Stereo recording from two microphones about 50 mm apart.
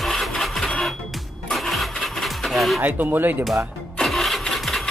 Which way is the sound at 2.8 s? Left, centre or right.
Right.